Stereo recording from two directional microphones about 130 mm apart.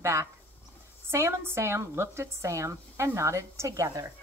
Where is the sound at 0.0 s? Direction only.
20° right (ahead or behind).